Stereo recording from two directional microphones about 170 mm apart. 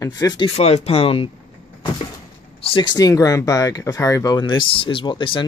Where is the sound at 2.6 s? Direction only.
25° left (ahead or behind).